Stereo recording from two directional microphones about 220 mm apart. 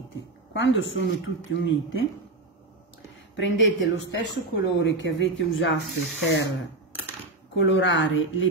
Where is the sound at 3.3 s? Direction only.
55° left (ahead or behind).